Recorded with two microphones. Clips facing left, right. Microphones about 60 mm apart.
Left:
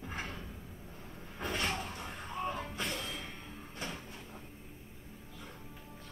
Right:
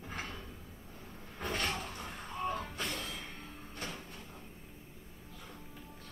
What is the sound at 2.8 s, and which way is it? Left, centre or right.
Music, centre.